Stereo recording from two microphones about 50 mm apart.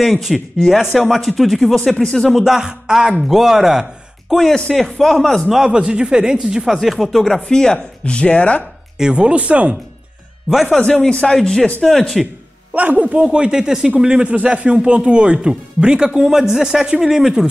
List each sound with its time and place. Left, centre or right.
0.0 s speech: centre
2.3 s speech: centre
4.9 s speech: centre
5.5 s speech: centre
7.3 s speech: centre
9.1 s speech: right
10.5 s speech: centre
10.8 s speech: left
12.7 s speech: right; by 17.5 s centre